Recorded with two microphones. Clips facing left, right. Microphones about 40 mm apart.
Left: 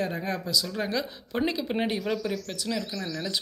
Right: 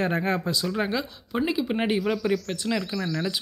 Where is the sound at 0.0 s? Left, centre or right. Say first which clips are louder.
Right 5 dB; right.